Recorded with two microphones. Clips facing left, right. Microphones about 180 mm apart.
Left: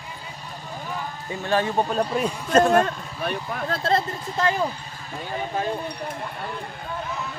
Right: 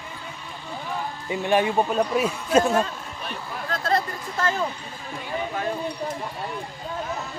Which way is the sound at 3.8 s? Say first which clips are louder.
Left 1 dB; 25° left (ahead or behind).